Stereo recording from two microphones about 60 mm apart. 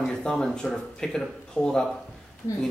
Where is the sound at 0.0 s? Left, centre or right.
Centre.